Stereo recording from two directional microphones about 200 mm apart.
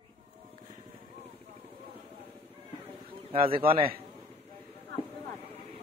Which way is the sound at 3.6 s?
45° right (ahead or behind).